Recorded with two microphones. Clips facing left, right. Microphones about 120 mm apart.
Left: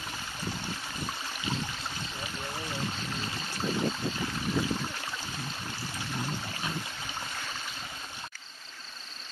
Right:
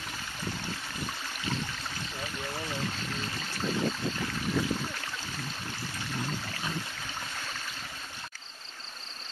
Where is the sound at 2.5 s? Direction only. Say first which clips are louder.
Even; 15° left (ahead or behind).